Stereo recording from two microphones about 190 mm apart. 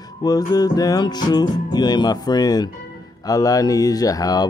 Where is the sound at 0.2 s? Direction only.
20° left (ahead or behind).